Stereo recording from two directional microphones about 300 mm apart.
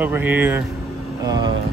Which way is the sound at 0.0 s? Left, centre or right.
Centre.